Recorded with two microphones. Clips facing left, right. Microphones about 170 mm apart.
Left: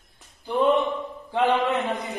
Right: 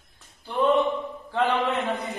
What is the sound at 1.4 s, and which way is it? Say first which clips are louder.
Speech: left 2 dB; 15° left (ahead or behind).